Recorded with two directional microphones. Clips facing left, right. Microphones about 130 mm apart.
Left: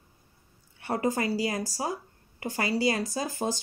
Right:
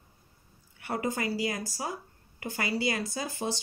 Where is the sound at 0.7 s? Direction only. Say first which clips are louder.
Left 4 dB; 30° left (ahead or behind).